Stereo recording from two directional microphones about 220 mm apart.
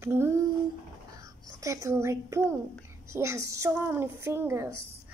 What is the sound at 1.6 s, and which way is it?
A woman's voice, 15° right (ahead or behind).